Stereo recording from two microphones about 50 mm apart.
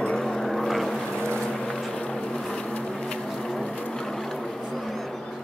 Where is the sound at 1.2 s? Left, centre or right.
Centre.